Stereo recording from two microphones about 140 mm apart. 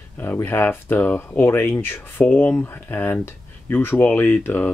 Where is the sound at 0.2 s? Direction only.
15° left (ahead or behind).